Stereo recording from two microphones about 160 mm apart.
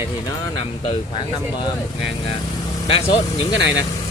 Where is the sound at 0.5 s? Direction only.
35° left (ahead or behind).